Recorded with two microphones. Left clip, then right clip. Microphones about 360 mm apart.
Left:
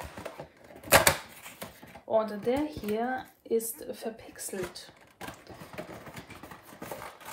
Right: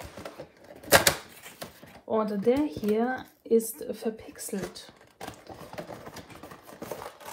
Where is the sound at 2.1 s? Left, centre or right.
Centre.